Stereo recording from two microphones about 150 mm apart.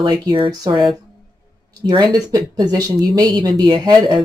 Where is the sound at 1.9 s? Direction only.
30° right (ahead or behind).